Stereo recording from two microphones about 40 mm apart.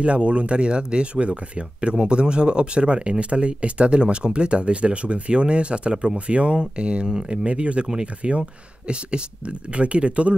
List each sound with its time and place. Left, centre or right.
0.0 s speech: right